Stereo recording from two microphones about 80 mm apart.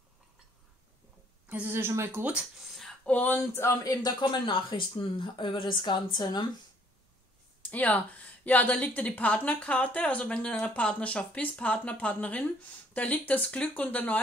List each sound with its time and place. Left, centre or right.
1.5 s speech: right
2.2 s speech: centre
3.1 s speech: left
3.7 s speech: left
7.7 s a woman's voice: centre